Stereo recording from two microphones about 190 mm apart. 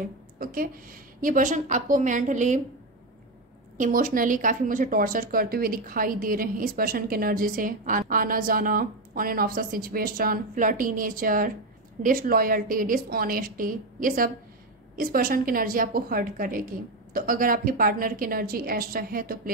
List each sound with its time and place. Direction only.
0.4 s a woman's voice: 50° right (ahead or behind)
3.7 s a woman's voice: 45° right (ahead or behind)